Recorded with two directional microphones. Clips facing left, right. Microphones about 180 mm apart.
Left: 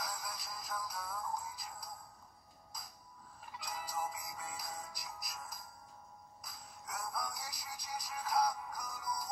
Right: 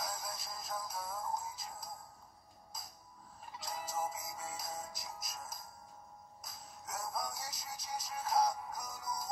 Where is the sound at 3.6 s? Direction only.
25° right (ahead or behind).